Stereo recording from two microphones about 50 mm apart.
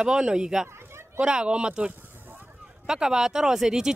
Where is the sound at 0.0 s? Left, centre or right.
Centre.